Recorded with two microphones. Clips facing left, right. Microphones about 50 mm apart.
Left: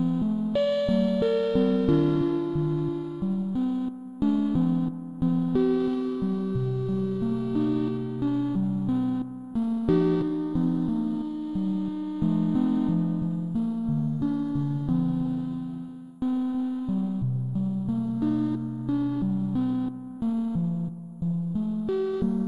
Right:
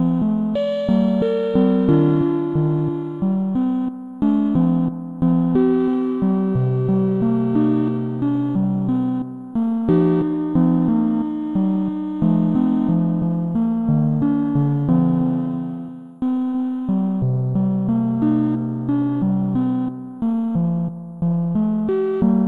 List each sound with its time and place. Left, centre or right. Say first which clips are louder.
0.0 s music: right 7 dB; right
0.6 s music: right 2 dB; centre
3.3 s music: right 8 dB; right
10.5 s music: right 9 dB; right
13.0 s music: right 8 dB; right
16.3 s music: right 6 dB; right
17.6 s music: right 9 dB; right
19.2 s music: right 8 dB; right
19.5 s music: right 6 dB; right
21.5 s music: right 10 dB; right
21.8 s music: right 4 dB; right